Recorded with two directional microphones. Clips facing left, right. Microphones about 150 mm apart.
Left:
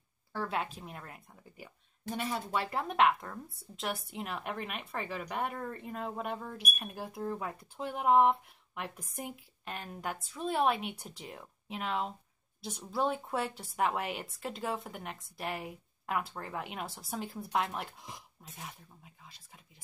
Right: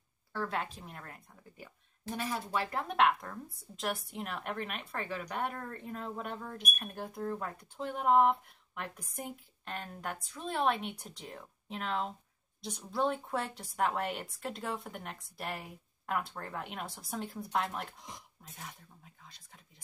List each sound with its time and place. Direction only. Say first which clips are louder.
0.3 s speech: left 1 dB; 10° left (ahead or behind)
2.1 s speech: left 1 dB; 25° left (ahead or behind)
2.7 s a woman's voice: left 1 dB; centre (ahead or behind)